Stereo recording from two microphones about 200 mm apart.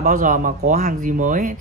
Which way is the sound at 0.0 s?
40° right (ahead or behind).